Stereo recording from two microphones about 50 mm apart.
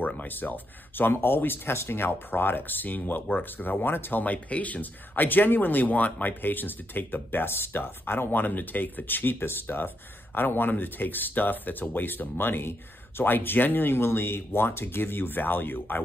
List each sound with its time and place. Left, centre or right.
0.3 s speech: left
4.2 s speech: left